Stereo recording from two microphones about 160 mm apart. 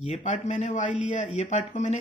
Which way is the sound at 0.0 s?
50° left (ahead or behind).